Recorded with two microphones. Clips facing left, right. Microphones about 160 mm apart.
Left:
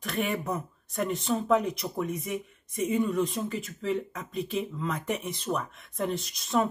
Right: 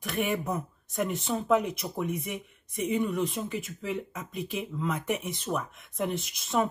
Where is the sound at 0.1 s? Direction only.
10° right (ahead or behind).